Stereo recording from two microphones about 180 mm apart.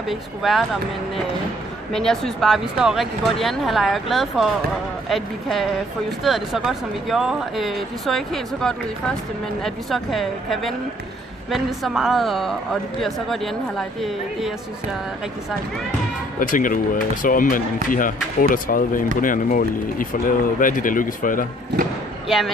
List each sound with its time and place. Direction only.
0.1 s speech: centre (ahead or behind)
1.9 s speech: centre (ahead or behind)
16.3 s speech: 50° left (ahead or behind)